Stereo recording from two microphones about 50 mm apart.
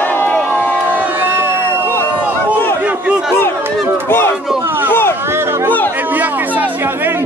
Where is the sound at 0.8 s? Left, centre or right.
Right.